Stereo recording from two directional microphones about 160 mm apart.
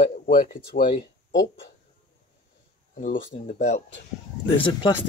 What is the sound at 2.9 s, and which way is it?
Speech, 50° left (ahead or behind).